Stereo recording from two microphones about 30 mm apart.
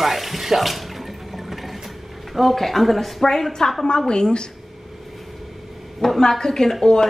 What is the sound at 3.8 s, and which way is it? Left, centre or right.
Speech, left.